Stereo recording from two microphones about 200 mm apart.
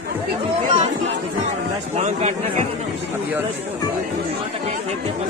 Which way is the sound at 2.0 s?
35° right (ahead or behind).